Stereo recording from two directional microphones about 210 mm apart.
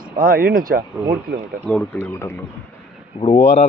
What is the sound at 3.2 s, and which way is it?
Speech, 30° left (ahead or behind).